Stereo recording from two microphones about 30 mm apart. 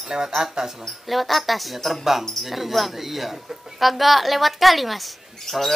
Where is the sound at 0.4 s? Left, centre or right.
Centre.